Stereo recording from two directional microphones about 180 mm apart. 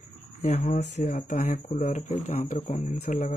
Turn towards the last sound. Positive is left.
turn(degrees=45)  # may be behind; listen again after turning